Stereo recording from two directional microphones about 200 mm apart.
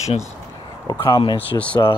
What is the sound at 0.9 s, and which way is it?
Speech, 20° left (ahead or behind).